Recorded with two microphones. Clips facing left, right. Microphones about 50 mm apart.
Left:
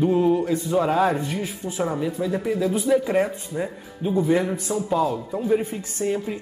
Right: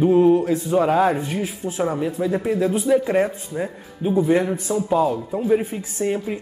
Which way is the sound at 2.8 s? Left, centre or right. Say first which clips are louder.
Right 1 dB; centre.